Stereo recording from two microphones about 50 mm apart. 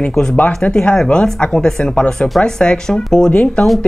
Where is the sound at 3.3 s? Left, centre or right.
Left.